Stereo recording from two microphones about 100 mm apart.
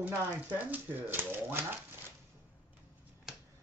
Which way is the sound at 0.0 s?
15° right (ahead or behind).